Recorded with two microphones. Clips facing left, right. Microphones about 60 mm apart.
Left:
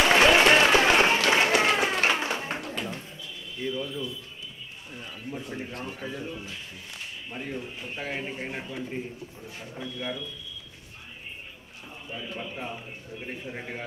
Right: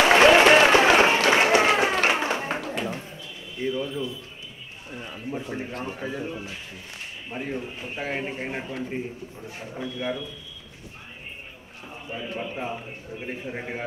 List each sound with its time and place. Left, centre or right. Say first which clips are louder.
0.0 s applause: right 4 dB; centre
1.3 s a sound: right 3 dB; centre
4.9 s a man's voice: right 5 dB; right
11.9 s a man's voice: right 4 dB; centre